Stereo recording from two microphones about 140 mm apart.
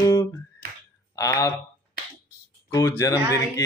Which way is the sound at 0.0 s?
25° left (ahead or behind).